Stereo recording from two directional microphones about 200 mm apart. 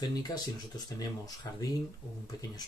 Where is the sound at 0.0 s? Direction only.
20° left (ahead or behind).